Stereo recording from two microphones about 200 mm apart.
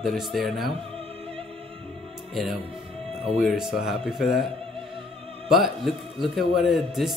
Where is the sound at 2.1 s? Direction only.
Centre (ahead or behind).